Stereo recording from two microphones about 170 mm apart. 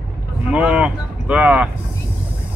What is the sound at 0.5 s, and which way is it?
Speech, 5° right (ahead or behind).